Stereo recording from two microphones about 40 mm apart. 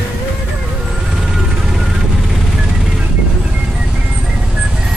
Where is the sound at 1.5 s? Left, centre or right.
Centre.